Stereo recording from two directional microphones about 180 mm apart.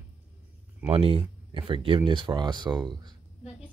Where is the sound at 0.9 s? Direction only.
30° right (ahead or behind).